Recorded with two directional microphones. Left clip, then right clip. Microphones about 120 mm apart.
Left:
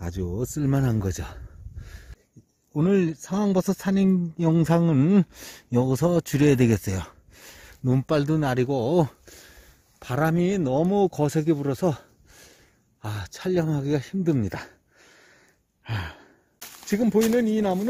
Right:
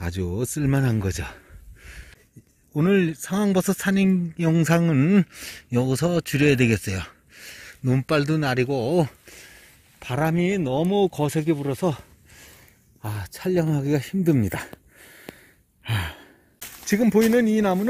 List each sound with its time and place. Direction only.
0.0 s speech: 30° left (ahead or behind); by 1.4 s 45° left (ahead or behind)
2.7 s speech: 30° left (ahead or behind); by 11.9 s 90° left
13.0 s speech: 30° left (ahead or behind)
13.5 s speech: 15° left (ahead or behind)
15.8 s sigh: centre (ahead or behind)
16.8 s speech: 20° left (ahead or behind)